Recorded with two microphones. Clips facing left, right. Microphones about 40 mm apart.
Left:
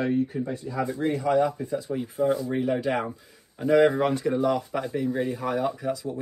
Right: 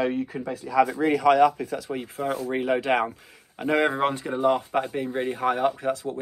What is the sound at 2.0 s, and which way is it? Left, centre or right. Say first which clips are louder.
Speech: left 6 dB; right.